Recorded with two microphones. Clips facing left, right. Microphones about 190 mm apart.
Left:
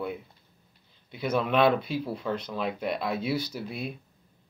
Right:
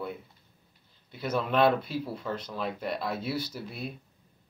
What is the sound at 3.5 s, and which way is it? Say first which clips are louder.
Speech: left 3 dB; 20° left (ahead or behind).